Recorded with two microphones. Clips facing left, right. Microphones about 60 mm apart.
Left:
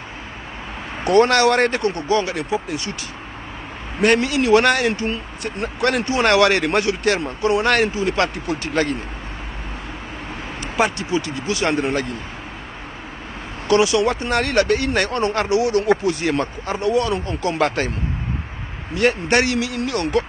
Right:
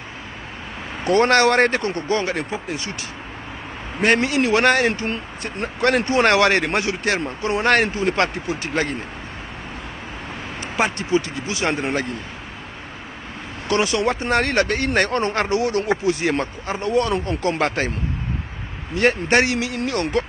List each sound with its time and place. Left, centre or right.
1.0 s speech: right
4.0 s speech: right
8.5 s speech: right
10.6 s speech: right
13.7 s speech: right
15.9 s speech: right
18.9 s speech: right